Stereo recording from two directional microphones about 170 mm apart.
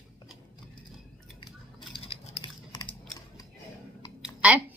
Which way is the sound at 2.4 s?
25° left (ahead or behind).